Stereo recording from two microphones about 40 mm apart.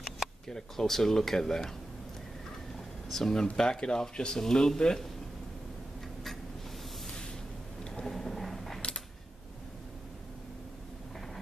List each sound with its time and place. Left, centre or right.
0.5 s speech: centre
3.1 s speech: centre
7.8 s a sound: centre